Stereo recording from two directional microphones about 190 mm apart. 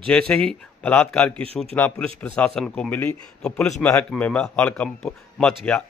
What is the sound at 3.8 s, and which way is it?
A man's voice, 15° left (ahead or behind).